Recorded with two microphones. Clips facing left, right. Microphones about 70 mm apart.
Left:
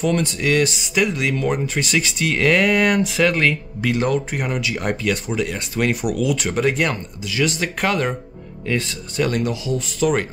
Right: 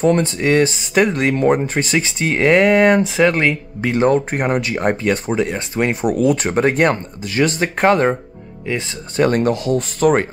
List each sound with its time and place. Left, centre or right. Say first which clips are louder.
0.0 s speech: right 5 dB; right
3.9 s speech: right 6 dB; right